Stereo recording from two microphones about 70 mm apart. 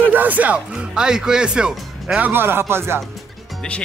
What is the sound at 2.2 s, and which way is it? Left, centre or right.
Speech, right.